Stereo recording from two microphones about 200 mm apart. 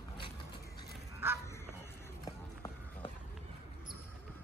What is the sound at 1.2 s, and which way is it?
Honk, 10° right (ahead or behind).